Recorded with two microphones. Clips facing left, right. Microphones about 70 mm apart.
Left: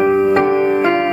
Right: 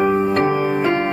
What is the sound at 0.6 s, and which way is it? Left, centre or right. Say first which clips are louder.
Music: left 4 dB; left.